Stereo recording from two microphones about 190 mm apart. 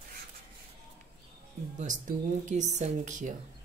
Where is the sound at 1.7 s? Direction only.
40° right (ahead or behind).